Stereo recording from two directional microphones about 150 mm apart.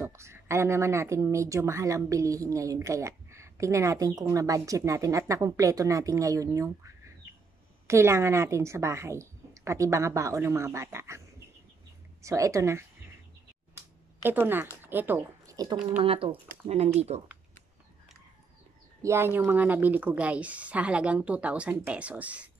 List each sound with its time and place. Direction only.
0.0 s speech: 20° right (ahead or behind)
7.8 s speech: 20° right (ahead or behind)
14.2 s a woman's voice: 15° right (ahead or behind)
15.5 s speech: 25° right (ahead or behind)
16.0 s speech: 40° right (ahead or behind)
19.0 s a woman's voice: 15° right (ahead or behind)